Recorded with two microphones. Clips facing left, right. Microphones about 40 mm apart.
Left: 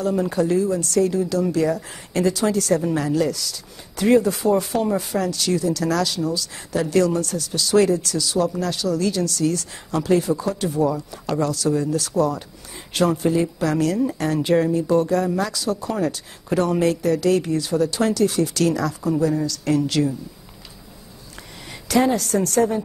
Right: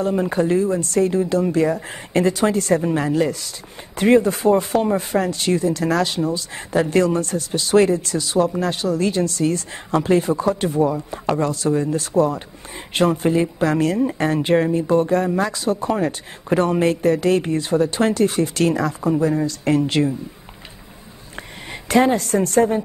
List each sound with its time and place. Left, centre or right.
0.0 s speech: right
21.8 s speech: right